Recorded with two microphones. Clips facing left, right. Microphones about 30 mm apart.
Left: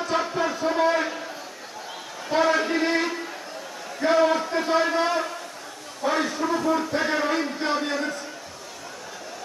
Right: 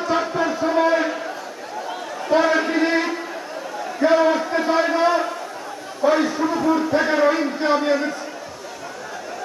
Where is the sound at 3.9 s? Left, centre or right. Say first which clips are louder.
Right 4 dB; centre.